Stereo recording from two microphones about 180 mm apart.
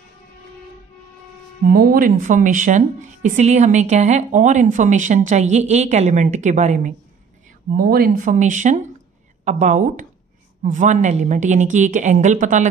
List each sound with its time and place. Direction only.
1.7 s a woman's voice: 55° right (ahead or behind)
7.7 s a woman's voice: 55° right (ahead or behind)